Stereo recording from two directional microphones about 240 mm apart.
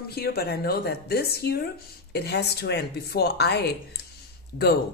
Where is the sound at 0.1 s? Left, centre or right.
Left.